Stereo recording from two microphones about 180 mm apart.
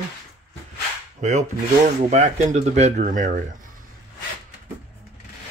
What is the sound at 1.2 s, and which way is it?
Filing, 40° right (ahead or behind).